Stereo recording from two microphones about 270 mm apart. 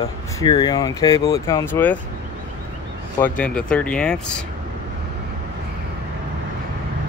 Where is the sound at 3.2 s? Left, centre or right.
Centre.